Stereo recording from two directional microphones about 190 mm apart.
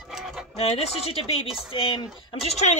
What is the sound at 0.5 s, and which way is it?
Speech, 35° left (ahead or behind).